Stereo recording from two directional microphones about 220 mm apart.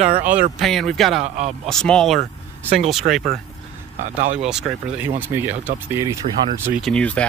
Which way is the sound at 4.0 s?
30° right (ahead or behind).